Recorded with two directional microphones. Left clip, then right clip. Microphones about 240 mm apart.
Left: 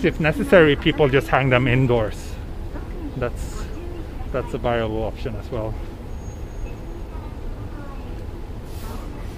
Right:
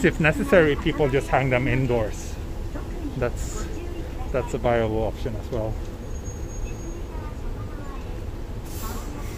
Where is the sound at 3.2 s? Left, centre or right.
Centre.